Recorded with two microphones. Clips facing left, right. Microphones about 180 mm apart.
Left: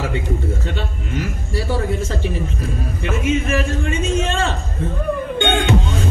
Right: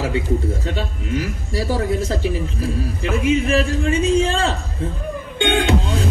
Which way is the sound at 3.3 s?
35° right (ahead or behind).